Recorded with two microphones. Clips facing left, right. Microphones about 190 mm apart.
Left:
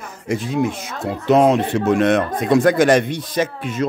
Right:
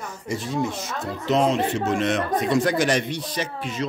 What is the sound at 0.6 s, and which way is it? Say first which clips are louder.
Speech: left 5 dB; 60° left (ahead or behind).